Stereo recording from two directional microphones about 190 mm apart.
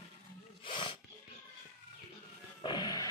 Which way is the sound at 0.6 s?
25° left (ahead or behind).